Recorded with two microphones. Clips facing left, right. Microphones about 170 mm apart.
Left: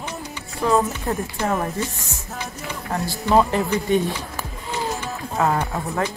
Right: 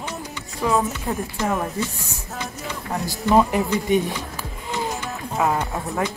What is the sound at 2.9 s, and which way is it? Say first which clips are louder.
Music: left 1 dB; centre (ahead or behind).